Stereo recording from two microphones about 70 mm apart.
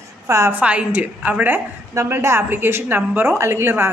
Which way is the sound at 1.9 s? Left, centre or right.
Right.